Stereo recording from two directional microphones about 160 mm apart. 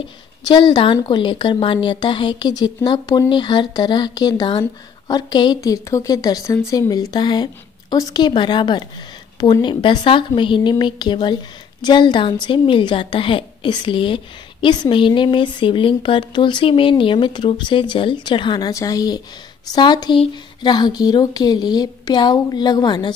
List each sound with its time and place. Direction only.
0.4 s a woman's voice: 25° left (ahead or behind)